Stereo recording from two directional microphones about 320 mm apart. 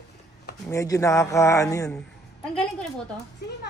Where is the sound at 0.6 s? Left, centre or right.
Centre.